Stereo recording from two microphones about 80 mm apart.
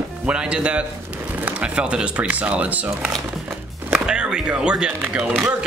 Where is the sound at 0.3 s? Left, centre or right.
Centre.